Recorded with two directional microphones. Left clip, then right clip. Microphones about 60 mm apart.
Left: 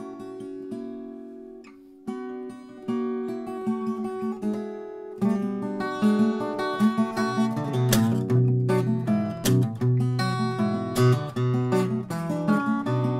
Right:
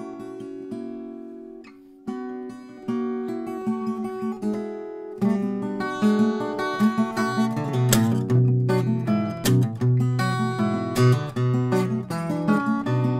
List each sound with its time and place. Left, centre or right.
2.9 s guitar: right
5.2 s music: right